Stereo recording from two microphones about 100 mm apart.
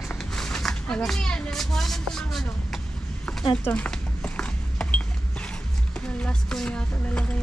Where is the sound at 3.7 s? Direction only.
10° left (ahead or behind).